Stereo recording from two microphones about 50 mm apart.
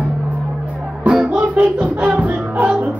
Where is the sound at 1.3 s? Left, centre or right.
Right.